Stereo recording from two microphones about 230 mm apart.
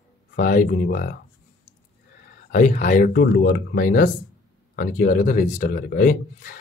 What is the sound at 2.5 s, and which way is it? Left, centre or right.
Speech, left.